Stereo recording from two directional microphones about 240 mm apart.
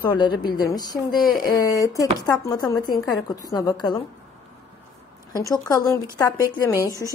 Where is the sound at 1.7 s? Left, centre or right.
Centre.